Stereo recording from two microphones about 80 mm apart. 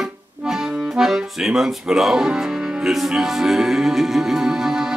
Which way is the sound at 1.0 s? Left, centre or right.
Centre.